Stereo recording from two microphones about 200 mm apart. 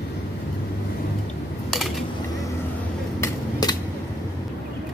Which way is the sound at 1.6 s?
Centre (ahead or behind).